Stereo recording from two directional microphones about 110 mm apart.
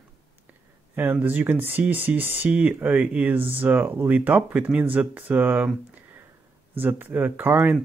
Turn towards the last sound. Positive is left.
turn(degrees=-15)  # may be behind; listen again after turning